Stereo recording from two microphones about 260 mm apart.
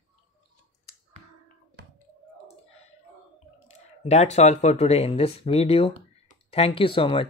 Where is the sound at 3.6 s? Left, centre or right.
Left.